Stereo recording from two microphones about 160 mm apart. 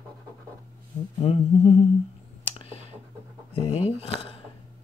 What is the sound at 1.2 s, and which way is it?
Speech, 40° left (ahead or behind).